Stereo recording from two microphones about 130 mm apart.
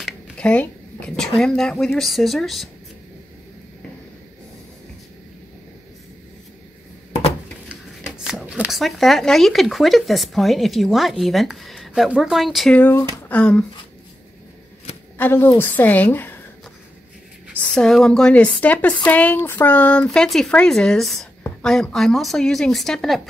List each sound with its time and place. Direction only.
0.0 s speech: 10° left (ahead or behind)
7.1 s dishes: 50° left (ahead or behind)
8.2 s speech: 5° right (ahead or behind)
12.7 s a woman's voice: 15° left (ahead or behind)
15.1 s a woman's voice: 15° left (ahead or behind)
17.6 s a woman's voice: 5° left (ahead or behind)